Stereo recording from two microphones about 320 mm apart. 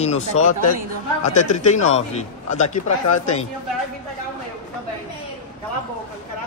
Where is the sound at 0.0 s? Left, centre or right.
Left.